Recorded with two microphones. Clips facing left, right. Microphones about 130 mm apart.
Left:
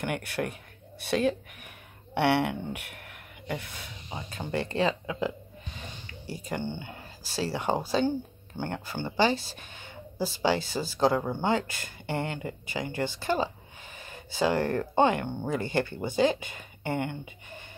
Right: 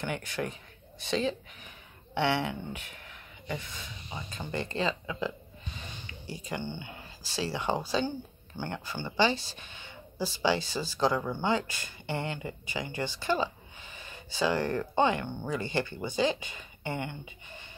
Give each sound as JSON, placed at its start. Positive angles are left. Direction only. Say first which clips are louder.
{"t": 0.0, "sound": "speech", "louder": "left 3 dB", "side_deg": 60}
{"t": 6.0, "sound": "a sound", "louder": "left 3 dB", "side_deg": 50}
{"t": 6.8, "sound": "speech", "louder": "left 2 dB", "side_deg": 50}